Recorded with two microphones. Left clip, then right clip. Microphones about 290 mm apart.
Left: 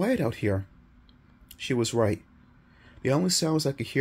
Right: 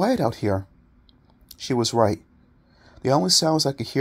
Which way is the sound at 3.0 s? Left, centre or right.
Centre.